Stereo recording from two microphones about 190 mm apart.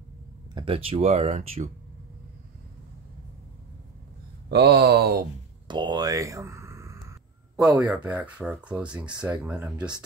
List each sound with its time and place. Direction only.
0.6 s speech: 30° right (ahead or behind)
4.5 s speech: 60° right (ahead or behind)
5.7 s a sound: 25° right (ahead or behind)
7.7 s speech: 10° right (ahead or behind)